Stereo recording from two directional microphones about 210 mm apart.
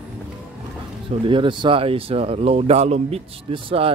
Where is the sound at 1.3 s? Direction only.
25° right (ahead or behind).